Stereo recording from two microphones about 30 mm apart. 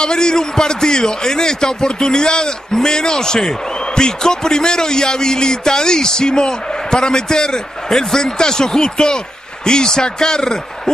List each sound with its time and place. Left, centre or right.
0.0 s a man's voice: left